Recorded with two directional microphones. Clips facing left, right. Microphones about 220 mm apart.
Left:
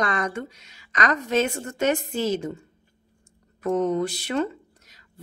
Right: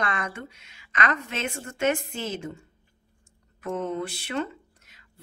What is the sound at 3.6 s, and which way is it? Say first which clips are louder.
Speech: left 7 dB; 40° left (ahead or behind).